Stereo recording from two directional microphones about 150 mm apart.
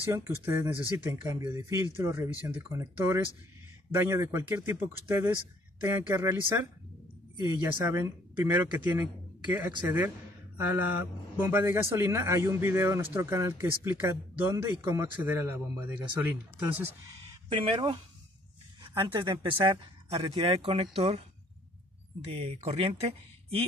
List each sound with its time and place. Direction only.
0.1 s a man's voice: 20° right (ahead or behind)
7.4 s a man's voice: 20° right (ahead or behind)
15.2 s a man's voice: 15° right (ahead or behind)
17.5 s speech: 35° right (ahead or behind)
22.3 s speech: 40° right (ahead or behind)